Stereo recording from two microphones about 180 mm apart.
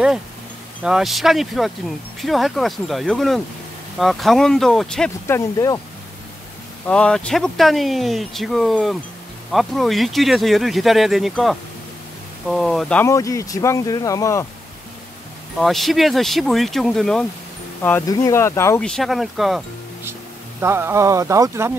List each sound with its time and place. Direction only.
0.8 s speech: centre (ahead or behind)
5.2 s speech: 15° left (ahead or behind)
6.9 s speech: 5° left (ahead or behind)
15.6 s speech: centre (ahead or behind)
18.8 s speech: 5° left (ahead or behind)
20.6 s speech: 15° right (ahead or behind)